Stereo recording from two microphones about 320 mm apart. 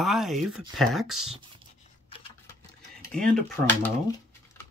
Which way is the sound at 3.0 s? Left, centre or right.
Centre.